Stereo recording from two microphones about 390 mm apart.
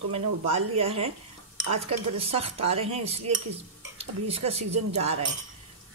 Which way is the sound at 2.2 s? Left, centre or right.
Centre.